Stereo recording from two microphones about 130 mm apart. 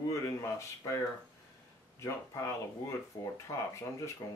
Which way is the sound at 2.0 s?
20° left (ahead or behind).